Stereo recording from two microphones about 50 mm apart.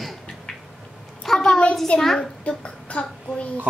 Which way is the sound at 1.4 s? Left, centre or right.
Left.